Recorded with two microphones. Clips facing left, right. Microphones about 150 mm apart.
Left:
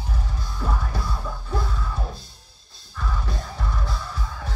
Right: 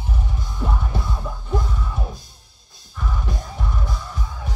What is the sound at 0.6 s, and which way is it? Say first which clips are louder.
Music: right 2 dB; 20° right (ahead or behind).